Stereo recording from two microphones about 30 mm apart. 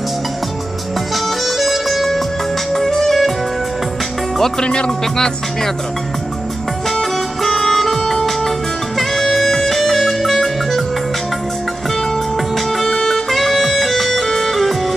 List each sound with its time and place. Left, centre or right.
1.1 s music: centre
2.7 s music: centre
3.1 s music: centre
4.6 s music: left
5.1 s music: centre
7.6 s music: centre
13.1 s music: centre